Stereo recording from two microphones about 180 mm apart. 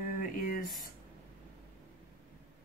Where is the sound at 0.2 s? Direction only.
50° left (ahead or behind).